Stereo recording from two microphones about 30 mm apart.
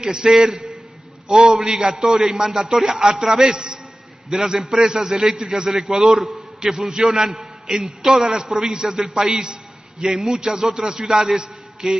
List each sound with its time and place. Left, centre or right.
0.0 s a man's voice: right